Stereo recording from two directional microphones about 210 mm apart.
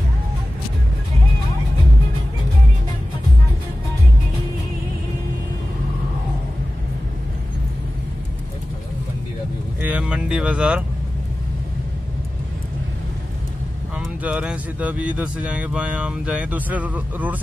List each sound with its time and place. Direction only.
9.8 s vehicle: 5° right (ahead or behind)
13.9 s speech: 5° right (ahead or behind)